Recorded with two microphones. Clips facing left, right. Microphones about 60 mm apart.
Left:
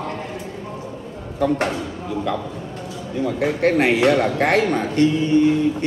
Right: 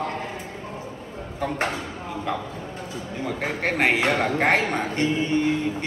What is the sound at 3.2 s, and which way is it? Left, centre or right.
A man's voice, right.